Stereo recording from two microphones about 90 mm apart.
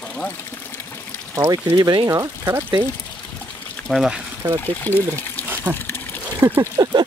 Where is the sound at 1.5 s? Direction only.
50° right (ahead or behind).